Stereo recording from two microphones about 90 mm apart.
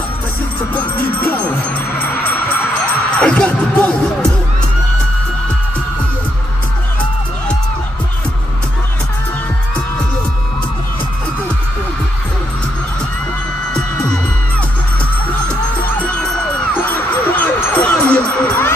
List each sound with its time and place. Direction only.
0.7 s music: 15° left (ahead or behind)
2.4 s music: 15° left (ahead or behind)
16.8 s music: 20° left (ahead or behind)